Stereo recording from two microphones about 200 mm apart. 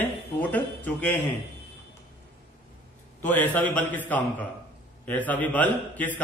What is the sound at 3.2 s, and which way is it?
Speech, 10° left (ahead or behind).